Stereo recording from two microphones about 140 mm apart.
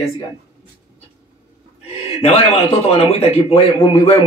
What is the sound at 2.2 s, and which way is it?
Speech, 45° left (ahead or behind).